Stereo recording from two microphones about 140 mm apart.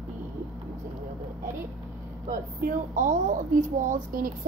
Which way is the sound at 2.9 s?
70° right (ahead or behind).